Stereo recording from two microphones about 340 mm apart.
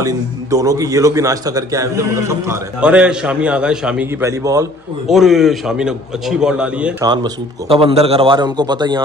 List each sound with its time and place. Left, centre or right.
0.0 s a man's voice: centre